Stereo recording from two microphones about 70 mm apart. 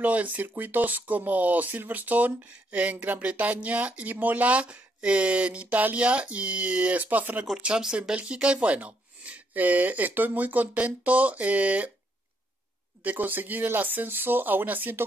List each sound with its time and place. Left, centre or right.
0.0 s speech: right
13.0 s speech: right